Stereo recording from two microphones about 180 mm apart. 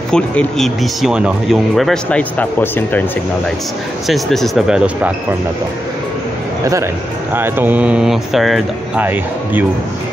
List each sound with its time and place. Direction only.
0.1 s speech: 5° left (ahead or behind)
4.1 s speech: centre (ahead or behind)
6.6 s speech: 15° right (ahead or behind)